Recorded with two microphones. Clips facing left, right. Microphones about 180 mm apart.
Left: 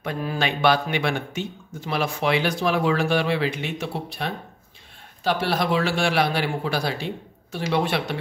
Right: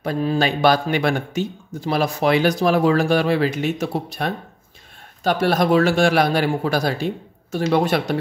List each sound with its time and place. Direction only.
0.0 s a man's voice: 30° right (ahead or behind)